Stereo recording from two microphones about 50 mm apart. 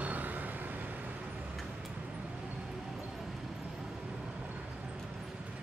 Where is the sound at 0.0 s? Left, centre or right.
Right.